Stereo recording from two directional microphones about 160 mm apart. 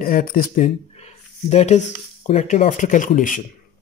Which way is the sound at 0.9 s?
40° left (ahead or behind).